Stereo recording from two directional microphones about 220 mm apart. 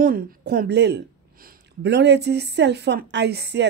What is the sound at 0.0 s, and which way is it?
A woman's voice, 40° right (ahead or behind).